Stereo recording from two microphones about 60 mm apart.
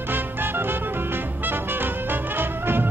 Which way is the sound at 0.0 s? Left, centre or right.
Right.